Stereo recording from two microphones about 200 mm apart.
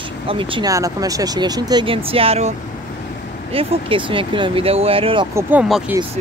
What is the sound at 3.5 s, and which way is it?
Speech, 25° right (ahead or behind).